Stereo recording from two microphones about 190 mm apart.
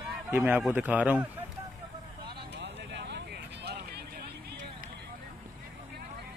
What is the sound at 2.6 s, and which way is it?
Vehicle, 65° right (ahead or behind).